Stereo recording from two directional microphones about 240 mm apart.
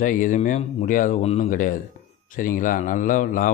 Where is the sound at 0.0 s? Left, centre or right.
Left.